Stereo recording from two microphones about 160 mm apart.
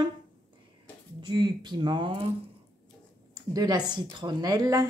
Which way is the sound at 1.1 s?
30° right (ahead or behind).